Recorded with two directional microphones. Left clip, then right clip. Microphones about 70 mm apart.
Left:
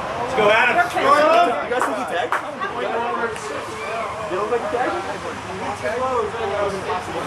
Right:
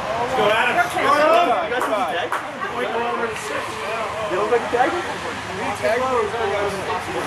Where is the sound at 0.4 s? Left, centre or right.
Left.